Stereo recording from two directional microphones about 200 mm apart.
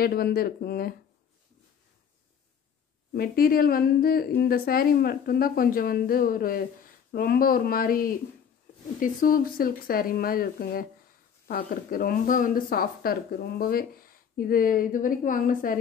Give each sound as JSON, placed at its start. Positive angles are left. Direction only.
{"t": 0.0, "sound": "speech", "side_deg": 50}
{"t": 3.1, "sound": "speech", "side_deg": 45}